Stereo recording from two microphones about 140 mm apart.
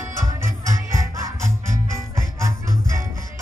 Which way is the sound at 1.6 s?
20° right (ahead or behind).